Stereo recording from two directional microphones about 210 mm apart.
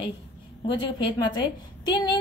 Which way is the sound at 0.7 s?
25° left (ahead or behind).